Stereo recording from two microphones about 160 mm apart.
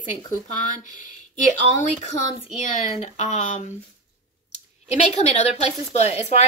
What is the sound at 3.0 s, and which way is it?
Speech, 45° left (ahead or behind).